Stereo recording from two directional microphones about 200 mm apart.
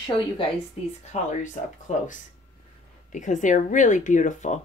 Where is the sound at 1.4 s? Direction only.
40° left (ahead or behind).